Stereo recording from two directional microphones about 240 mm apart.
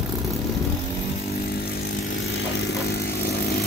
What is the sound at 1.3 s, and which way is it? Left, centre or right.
Vehicle, left.